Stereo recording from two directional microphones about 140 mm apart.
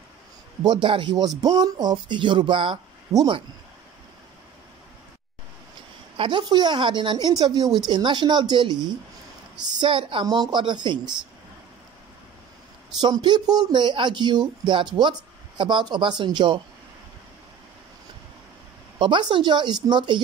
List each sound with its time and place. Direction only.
0.6 s speech: 30° right (ahead or behind)
3.1 s speech: 25° right (ahead or behind)
6.1 s speech: 35° right (ahead or behind)
13.0 s speech: 30° right (ahead or behind)
18.9 s speech: 35° right (ahead or behind)